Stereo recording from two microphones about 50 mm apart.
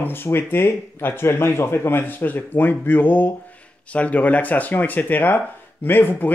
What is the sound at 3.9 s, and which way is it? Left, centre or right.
Speech, left.